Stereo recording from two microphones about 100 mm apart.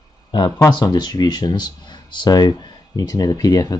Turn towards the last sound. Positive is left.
turn(degrees=40)  # may be behind; listen again after turning